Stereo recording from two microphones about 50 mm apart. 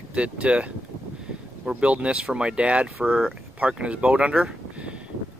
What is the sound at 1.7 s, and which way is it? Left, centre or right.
Speech, right.